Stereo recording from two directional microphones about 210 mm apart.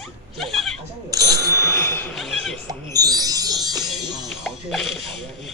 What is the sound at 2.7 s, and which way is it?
Speech, 20° right (ahead or behind).